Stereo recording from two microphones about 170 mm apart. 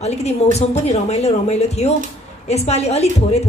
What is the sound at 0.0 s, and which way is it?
A woman's voice, 40° left (ahead or behind).